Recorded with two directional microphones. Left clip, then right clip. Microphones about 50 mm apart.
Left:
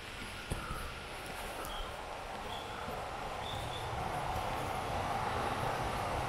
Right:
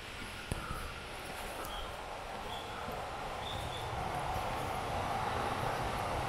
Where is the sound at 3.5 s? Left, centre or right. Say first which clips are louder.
Even; centre.